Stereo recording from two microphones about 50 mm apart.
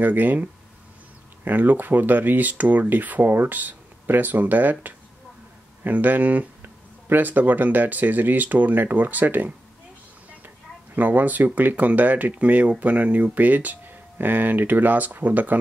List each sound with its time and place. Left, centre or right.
0.0 s speech: right
11.0 s speech: right